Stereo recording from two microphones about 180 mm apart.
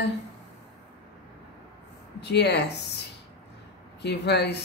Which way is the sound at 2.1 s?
70° left (ahead or behind).